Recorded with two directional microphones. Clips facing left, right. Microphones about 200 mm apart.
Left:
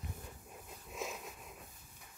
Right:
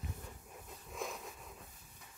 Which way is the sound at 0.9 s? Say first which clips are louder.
Even; 15° left (ahead or behind).